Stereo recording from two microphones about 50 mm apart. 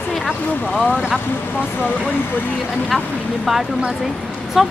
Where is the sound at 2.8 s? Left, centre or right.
Centre.